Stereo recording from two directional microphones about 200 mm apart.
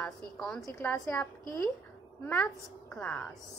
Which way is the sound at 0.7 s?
15° left (ahead or behind).